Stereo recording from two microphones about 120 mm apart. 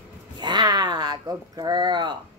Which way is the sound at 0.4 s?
40° right (ahead or behind).